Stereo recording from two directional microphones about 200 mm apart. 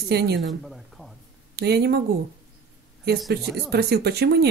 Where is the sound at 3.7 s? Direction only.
55° right (ahead or behind).